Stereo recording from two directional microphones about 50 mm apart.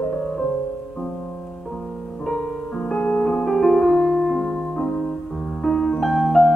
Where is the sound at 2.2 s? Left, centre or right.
Centre.